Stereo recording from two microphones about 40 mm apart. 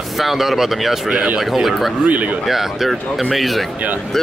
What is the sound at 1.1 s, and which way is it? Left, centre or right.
Speech, right.